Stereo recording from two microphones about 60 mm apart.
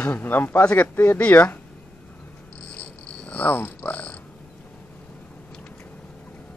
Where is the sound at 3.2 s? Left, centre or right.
Left.